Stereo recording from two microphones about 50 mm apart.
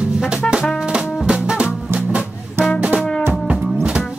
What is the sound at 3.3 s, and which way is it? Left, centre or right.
Music, right.